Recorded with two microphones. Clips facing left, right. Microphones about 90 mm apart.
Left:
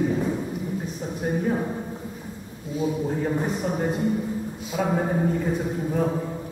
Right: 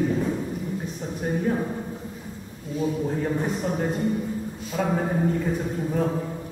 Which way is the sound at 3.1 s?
5° left (ahead or behind).